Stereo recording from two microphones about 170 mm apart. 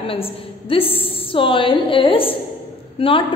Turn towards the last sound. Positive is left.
turn(degrees=30)  # may be behind; listen again after turning